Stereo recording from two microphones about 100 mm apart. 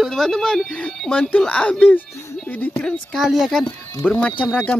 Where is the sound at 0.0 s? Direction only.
5° left (ahead or behind).